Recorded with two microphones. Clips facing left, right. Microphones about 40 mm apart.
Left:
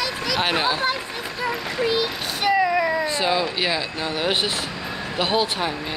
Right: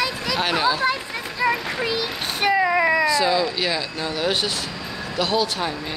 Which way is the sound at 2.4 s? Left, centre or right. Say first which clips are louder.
Right 1 dB; right.